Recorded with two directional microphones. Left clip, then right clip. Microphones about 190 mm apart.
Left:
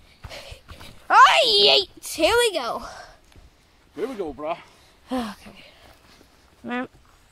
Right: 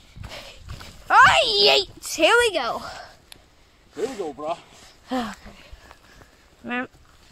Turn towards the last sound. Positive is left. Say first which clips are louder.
# right 1 dB
turn(degrees=5)  # may be behind; listen again after turning